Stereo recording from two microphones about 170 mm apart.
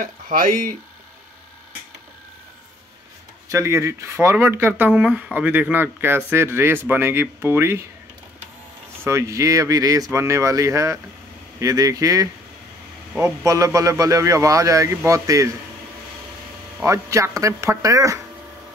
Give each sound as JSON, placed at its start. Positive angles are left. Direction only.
{"t": 0.0, "sound": "speech", "side_deg": -55}
{"t": 3.4, "sound": "speech", "side_deg": -15}
{"t": 9.0, "sound": "a man's voice", "side_deg": -15}
{"t": 16.8, "sound": "a man's voice", "side_deg": -15}